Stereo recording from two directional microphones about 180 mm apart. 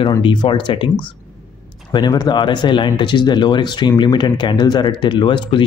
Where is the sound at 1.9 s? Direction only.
25° left (ahead or behind).